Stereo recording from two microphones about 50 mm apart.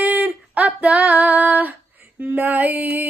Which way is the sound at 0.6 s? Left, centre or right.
Right.